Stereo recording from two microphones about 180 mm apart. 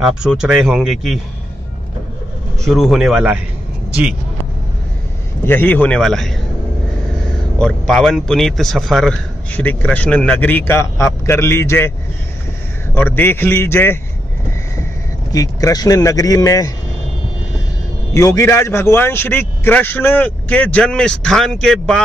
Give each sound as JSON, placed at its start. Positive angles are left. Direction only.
{"t": 0.4, "sound": "speech", "side_deg": -5}
{"t": 2.6, "sound": "speech", "side_deg": 0}
{"t": 5.4, "sound": "a man's voice", "side_deg": 10}
{"t": 7.5, "sound": "a man's voice", "side_deg": 5}
{"t": 12.9, "sound": "a man's voice", "side_deg": 10}
{"t": 15.3, "sound": "a man's voice", "side_deg": 20}
{"t": 18.1, "sound": "a man's voice", "side_deg": 15}